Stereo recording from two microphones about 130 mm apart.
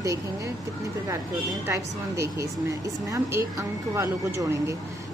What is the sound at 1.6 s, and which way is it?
A woman's voice, 20° right (ahead or behind).